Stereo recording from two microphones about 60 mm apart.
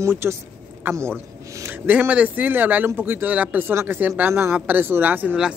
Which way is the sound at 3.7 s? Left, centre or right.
Right.